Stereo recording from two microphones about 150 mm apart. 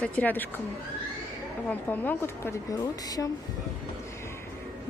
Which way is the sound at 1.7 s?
10° left (ahead or behind).